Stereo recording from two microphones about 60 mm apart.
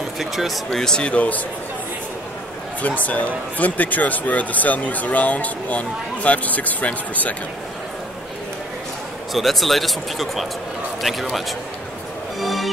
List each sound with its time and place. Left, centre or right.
0.2 s speech: centre; by 1.4 s left
2.8 s speech: left
9.3 s a man's voice: centre
12.4 s music: centre